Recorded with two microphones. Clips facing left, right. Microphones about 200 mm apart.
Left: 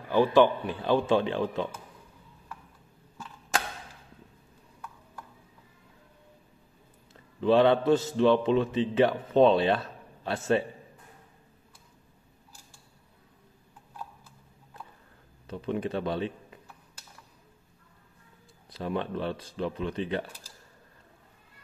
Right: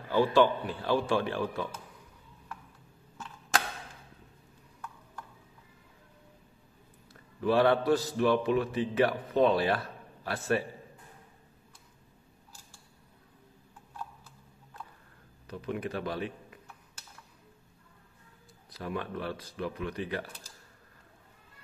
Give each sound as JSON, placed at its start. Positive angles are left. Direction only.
{"t": 0.1, "sound": "a man's voice", "side_deg": 15}
{"t": 7.3, "sound": "a man's voice", "side_deg": 25}
{"t": 15.4, "sound": "a man's voice", "side_deg": 30}
{"t": 18.7, "sound": "a man's voice", "side_deg": 25}